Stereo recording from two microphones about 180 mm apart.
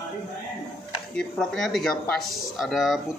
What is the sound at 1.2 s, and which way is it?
Speech, centre (ahead or behind).